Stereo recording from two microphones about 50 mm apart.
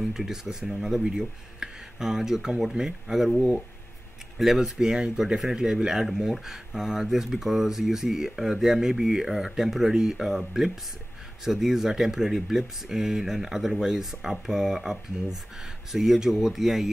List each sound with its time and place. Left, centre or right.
0.1 s speech: centre